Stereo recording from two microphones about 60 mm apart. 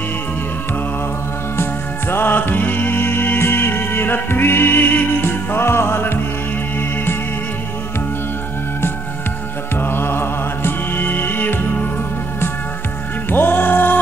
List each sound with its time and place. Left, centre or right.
1.6 s music: left
9.8 s music: left
13.3 s music: left